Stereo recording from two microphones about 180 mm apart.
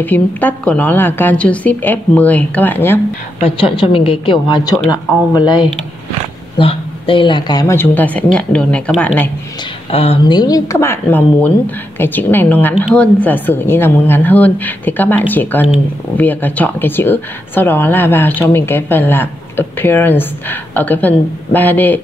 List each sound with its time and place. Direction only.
0.0 s speech: 10° left (ahead or behind)
3.4 s speech: 30° left (ahead or behind); by 9.3 s 10° left (ahead or behind)
9.8 s speech: 30° left (ahead or behind); by 22.0 s 10° left (ahead or behind)